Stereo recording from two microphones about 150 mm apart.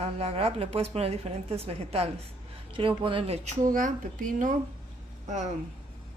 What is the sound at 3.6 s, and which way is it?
Speech, 65° right (ahead or behind).